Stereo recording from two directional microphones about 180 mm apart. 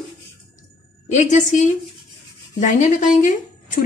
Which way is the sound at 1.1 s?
45° left (ahead or behind).